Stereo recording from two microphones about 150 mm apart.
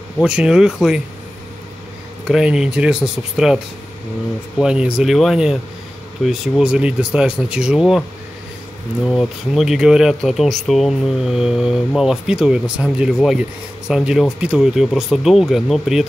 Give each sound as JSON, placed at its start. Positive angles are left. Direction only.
{"t": 0.2, "sound": "speech", "side_deg": -5}
{"t": 2.2, "sound": "speech", "side_deg": -5}
{"t": 9.0, "sound": "speech", "side_deg": -5}